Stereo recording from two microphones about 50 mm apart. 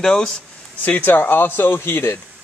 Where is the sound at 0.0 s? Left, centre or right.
Centre.